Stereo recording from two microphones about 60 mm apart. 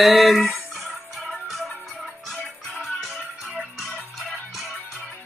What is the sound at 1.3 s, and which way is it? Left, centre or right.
Music, centre.